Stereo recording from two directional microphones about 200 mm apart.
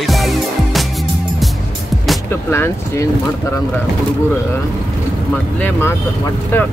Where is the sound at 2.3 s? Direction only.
10° left (ahead or behind).